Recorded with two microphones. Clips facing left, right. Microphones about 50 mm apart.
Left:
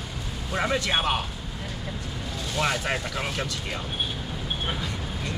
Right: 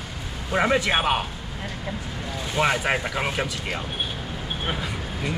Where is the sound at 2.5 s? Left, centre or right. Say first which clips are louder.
Right 4 dB; right.